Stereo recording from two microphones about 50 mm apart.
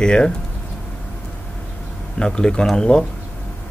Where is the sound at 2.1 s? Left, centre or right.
Centre.